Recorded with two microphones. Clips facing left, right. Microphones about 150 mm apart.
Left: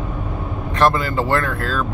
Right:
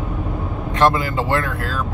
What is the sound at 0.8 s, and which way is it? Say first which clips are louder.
Speech: even; 20° right (ahead or behind).